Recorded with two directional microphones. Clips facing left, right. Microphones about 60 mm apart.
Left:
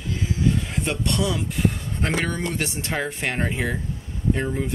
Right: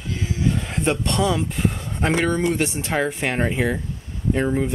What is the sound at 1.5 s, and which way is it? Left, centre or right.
Speech, centre.